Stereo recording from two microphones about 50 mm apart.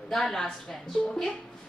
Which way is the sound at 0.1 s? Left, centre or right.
Centre.